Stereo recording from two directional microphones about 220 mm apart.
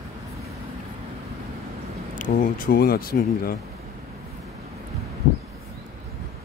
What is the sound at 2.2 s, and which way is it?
Speech, 40° left (ahead or behind).